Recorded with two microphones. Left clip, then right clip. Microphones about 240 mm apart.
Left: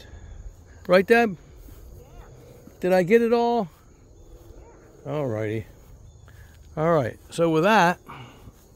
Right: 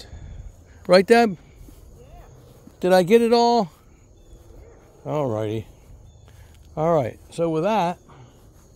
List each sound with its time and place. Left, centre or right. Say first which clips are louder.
0.8 s speech: right 3 dB; centre
2.8 s speech: right 3 dB; centre
5.0 s speech: right 3 dB; centre
6.7 s speech: right 1 dB; centre
8.1 s a sound: left 8 dB; left